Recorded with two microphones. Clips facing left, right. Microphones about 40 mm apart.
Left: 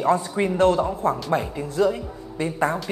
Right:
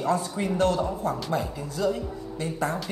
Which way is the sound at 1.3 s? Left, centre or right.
Left.